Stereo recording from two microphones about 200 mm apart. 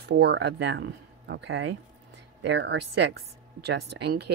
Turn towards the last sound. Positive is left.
turn(degrees=-55)  # may be behind; listen again after turning